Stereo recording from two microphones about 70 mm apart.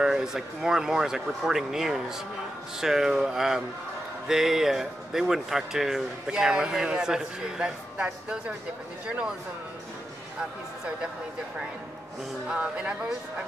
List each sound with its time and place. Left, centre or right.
0.0 s a man's voice: centre
12.4 s a man's voice: centre